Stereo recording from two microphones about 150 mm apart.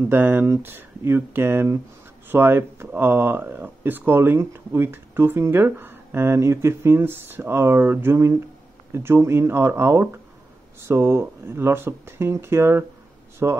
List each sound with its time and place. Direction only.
0.0 s speech: 15° right (ahead or behind)